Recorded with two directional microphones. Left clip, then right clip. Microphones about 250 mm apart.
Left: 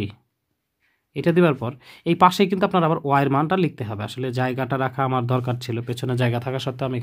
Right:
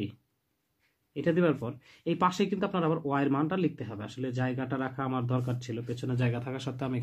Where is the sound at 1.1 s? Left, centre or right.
Left.